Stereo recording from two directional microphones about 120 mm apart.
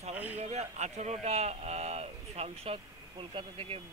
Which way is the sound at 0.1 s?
15° right (ahead or behind).